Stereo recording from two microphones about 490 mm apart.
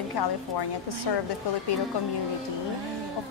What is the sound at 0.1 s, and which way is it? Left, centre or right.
Speech, left.